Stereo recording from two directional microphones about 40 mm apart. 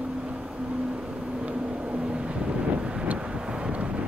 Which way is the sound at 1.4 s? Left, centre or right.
Right.